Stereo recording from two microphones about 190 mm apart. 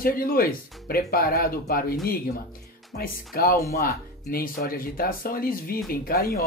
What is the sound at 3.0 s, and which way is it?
Speech, 50° left (ahead or behind).